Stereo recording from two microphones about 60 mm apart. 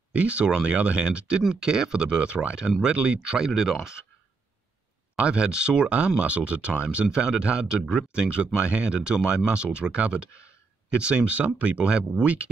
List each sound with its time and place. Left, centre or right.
0.1 s speech: right
5.1 s speech: centre